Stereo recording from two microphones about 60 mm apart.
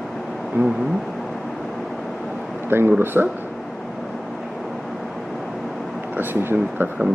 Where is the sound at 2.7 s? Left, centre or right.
Right.